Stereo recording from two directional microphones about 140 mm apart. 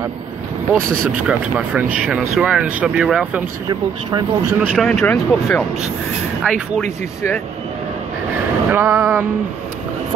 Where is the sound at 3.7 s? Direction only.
30° right (ahead or behind).